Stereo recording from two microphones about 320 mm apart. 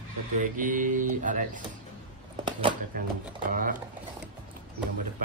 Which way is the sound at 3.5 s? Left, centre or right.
Right.